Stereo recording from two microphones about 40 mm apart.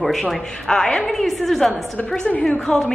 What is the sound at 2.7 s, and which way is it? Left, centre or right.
Speech, left.